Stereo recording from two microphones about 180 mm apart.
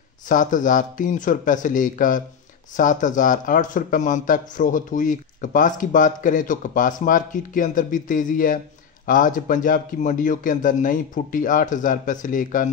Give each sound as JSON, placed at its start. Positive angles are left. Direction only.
{"t": 0.3, "sound": "speech", "side_deg": 45}